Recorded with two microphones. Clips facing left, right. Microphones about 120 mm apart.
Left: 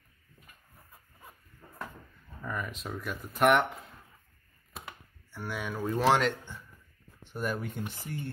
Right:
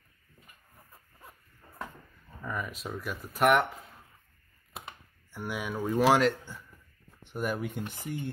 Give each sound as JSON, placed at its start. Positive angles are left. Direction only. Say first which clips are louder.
{"t": 2.4, "sound": "speech", "louder": "right 1 dB", "side_deg": 0}
{"t": 5.3, "sound": "speech", "louder": "right 2 dB", "side_deg": -10}